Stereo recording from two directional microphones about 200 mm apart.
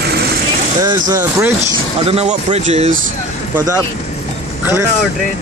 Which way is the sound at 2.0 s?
30° right (ahead or behind).